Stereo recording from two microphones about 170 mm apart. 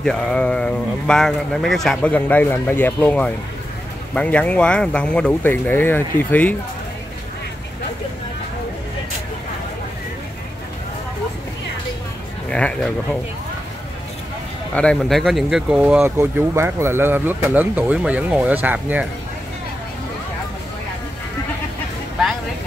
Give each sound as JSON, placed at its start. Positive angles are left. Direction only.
{"t": 0.0, "sound": "speech", "side_deg": 5}
{"t": 12.4, "sound": "speech", "side_deg": 5}
{"t": 14.7, "sound": "speech", "side_deg": 5}